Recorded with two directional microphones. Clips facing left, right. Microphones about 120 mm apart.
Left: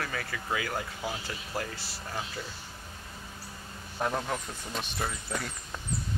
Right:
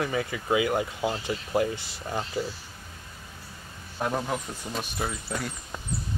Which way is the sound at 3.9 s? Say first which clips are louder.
Right 2 dB; 5° right (ahead or behind).